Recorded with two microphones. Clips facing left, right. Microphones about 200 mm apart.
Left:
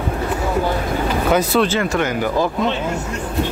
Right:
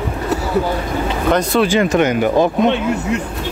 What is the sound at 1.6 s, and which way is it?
Speech, 15° right (ahead or behind).